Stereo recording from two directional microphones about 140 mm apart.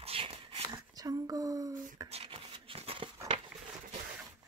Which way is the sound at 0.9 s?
25° right (ahead or behind).